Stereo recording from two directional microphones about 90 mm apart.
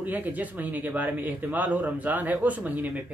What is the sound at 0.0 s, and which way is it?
Speech, 20° right (ahead or behind).